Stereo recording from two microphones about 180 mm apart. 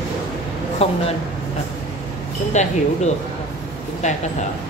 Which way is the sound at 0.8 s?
35° left (ahead or behind).